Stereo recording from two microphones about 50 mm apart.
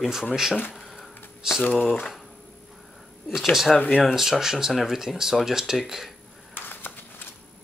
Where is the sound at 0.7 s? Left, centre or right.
Centre.